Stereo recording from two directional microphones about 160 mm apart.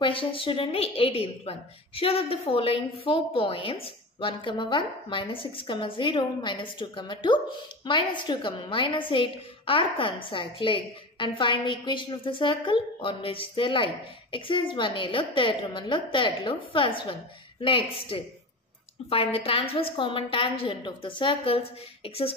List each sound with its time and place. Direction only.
0.0 s a woman's voice: 35° left (ahead or behind)